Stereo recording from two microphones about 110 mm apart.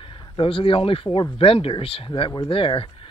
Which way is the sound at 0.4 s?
55° left (ahead or behind).